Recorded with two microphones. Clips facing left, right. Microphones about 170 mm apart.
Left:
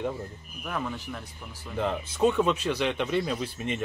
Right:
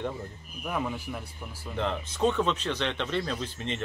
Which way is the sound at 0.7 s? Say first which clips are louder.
Right 1 dB; 10° right (ahead or behind).